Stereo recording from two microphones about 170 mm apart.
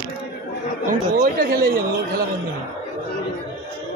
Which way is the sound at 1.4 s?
60° right (ahead or behind).